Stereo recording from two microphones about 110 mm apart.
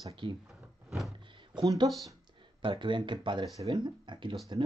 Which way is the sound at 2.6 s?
45° right (ahead or behind).